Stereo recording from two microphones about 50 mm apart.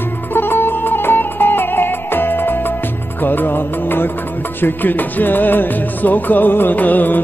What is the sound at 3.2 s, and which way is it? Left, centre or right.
Music of bollywood, left.